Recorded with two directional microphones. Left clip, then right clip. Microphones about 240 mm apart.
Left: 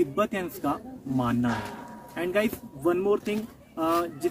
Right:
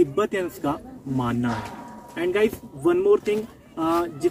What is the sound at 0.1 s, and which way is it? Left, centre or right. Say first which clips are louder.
Speech: right 4 dB; centre.